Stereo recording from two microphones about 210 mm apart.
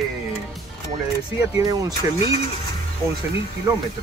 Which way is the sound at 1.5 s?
15° right (ahead or behind).